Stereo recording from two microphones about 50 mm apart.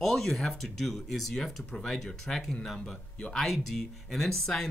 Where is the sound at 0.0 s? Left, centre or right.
Centre.